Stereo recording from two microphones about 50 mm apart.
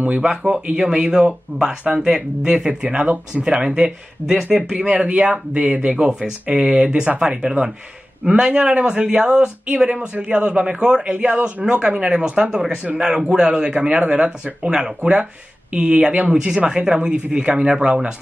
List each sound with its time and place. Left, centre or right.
0.2 s speech: centre
4.7 s speech: right